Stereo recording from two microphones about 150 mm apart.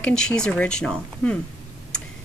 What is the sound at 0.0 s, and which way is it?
Speech, 5° left (ahead or behind).